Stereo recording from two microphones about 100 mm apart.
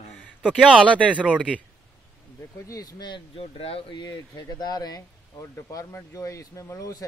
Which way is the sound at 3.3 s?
70° left (ahead or behind).